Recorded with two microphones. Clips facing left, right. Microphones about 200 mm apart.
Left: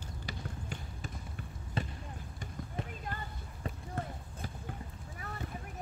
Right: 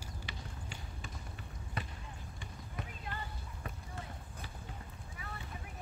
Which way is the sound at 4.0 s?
55° left (ahead or behind).